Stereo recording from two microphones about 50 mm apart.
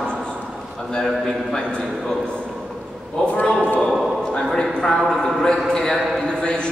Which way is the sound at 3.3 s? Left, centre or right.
Left.